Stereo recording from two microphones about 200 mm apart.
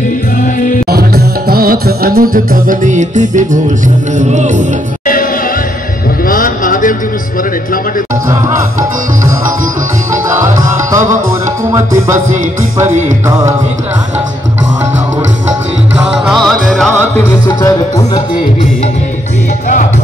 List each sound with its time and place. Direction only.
0.8 s music: 50° right (ahead or behind)
6.2 s music: 45° left (ahead or behind)
10.3 s music: 15° right (ahead or behind)
13.3 s music: 15° right (ahead or behind)
16.0 s music: centre (ahead or behind)
17.5 s music: 20° left (ahead or behind)